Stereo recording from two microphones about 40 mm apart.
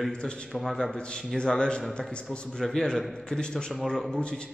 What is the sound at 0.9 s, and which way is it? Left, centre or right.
A man's voice, left.